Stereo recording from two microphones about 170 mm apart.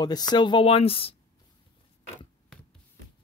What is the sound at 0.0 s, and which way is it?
Speech, 25° left (ahead or behind).